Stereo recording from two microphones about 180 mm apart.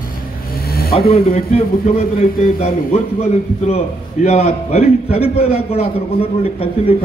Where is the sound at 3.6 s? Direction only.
35° left (ahead or behind).